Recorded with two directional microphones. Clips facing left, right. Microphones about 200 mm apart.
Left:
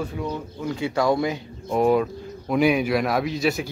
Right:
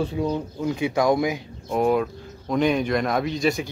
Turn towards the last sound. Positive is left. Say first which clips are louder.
# even
turn(degrees=5)  # may be behind; listen again after turning